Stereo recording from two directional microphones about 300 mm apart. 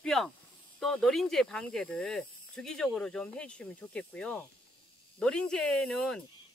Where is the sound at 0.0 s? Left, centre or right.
Centre.